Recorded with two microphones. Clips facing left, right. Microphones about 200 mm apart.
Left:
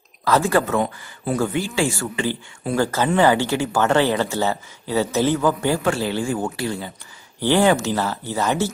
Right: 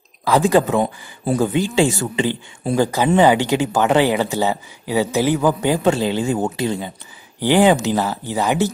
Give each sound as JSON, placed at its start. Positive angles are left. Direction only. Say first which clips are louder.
{"t": 0.2, "sound": "speech", "louder": "right 3 dB", "side_deg": -15}